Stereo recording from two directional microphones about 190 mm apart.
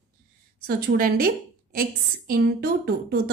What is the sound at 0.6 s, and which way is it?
Speech, 50° right (ahead or behind).